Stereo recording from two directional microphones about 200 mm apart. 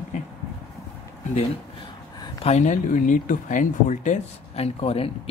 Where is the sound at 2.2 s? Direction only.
30° left (ahead or behind).